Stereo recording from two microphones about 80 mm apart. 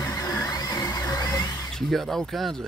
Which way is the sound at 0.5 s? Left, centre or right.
Left.